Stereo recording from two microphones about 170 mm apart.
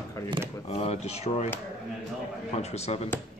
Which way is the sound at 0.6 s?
35° left (ahead or behind).